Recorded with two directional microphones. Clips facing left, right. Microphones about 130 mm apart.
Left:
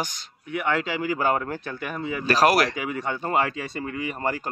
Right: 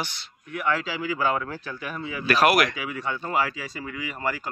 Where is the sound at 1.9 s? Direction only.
40° left (ahead or behind).